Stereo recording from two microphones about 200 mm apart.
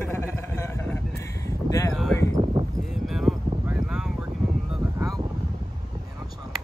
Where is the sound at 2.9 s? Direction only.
Centre (ahead or behind).